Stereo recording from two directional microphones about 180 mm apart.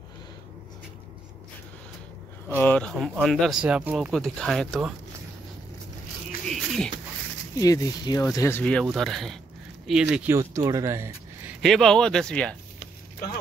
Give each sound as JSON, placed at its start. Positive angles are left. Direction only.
{"t": 2.6, "sound": "speech", "side_deg": 5}
{"t": 6.5, "sound": "a sound", "side_deg": 0}
{"t": 7.5, "sound": "speech", "side_deg": 20}
{"t": 10.3, "sound": "speech", "side_deg": -15}
{"t": 11.6, "sound": "speech", "side_deg": 0}